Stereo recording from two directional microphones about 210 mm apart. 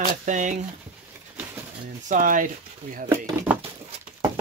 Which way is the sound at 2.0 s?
40° right (ahead or behind).